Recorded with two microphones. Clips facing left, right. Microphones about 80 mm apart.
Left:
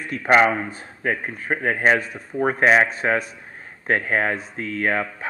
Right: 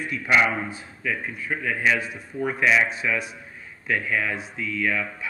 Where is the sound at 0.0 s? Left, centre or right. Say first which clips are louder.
Left 5 dB; left.